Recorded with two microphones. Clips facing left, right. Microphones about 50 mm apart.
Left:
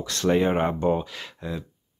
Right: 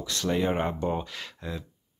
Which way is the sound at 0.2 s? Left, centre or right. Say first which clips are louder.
Left 5 dB; left.